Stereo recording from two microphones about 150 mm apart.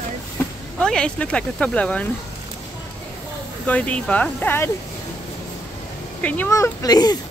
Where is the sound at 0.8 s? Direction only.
5° left (ahead or behind).